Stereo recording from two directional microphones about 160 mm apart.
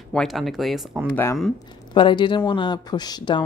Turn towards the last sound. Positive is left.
turn(degrees=25)  # may be behind; listen again after turning